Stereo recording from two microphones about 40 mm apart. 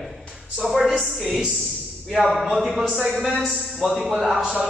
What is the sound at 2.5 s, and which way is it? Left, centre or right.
Mantra, centre.